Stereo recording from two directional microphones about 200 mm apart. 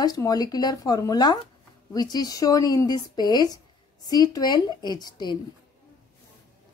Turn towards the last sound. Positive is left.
turn(degrees=20)  # may be behind; listen again after turning